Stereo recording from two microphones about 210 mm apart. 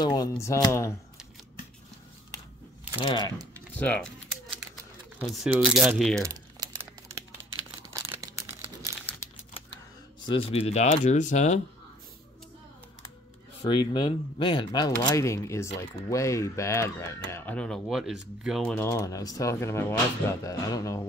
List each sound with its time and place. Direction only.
0.0 s speech: 20° left (ahead or behind)
3.0 s speech: 20° left (ahead or behind)
3.3 s typing: 5° left (ahead or behind)
5.2 s speech: 5° right (ahead or behind)
6.2 s typing: 15° right (ahead or behind)
7.9 s crumpling: 15° right (ahead or behind)
10.2 s speech: 25° left (ahead or behind)
13.6 s speech: 20° left (ahead or behind); by 18.8 s centre (ahead or behind)
18.8 s speech: 15° left (ahead or behind)